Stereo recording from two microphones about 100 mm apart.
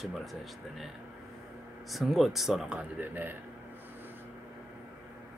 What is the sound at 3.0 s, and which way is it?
Speech, 20° right (ahead or behind).